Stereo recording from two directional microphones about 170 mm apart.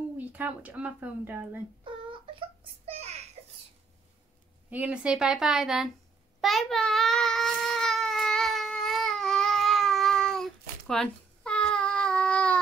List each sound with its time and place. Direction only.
0.2 s speech: 10° right (ahead or behind)
1.9 s a sound: 30° right (ahead or behind)
4.6 s a woman's voice: 10° right (ahead or behind)
6.4 s baby cry: centre (ahead or behind)